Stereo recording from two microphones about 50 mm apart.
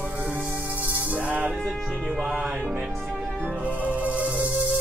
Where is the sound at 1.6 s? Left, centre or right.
Centre.